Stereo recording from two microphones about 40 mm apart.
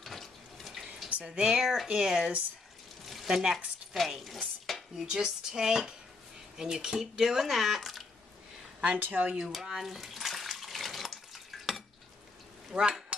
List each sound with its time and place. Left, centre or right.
0.0 s water tap: centre
1.1 s a sound: right
1.6 s speech: centre
1.9 s speech: centre
3.1 s a sound: centre
3.5 s speech: centre
4.4 s dishes: centre
4.9 s speech: centre
9.0 s speech: right
9.7 s bathtub: centre
12.7 s speech: right